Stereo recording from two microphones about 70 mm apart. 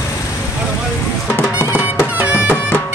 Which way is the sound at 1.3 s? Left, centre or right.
Left.